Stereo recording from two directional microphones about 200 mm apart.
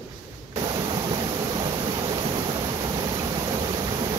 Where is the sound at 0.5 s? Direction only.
25° right (ahead or behind).